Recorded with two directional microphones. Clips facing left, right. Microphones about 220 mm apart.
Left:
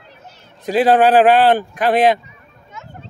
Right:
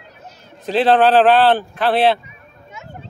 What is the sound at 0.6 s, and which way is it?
Speech, 10° left (ahead or behind).